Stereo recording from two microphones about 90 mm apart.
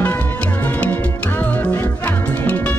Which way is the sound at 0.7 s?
20° left (ahead or behind).